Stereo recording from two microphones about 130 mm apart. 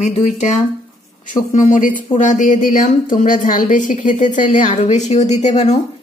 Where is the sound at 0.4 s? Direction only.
65° left (ahead or behind).